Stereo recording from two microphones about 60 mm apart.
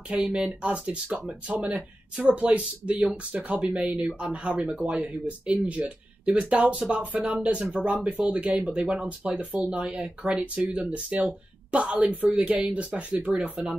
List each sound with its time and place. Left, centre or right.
0.3 s speech: centre
13.2 s speech: centre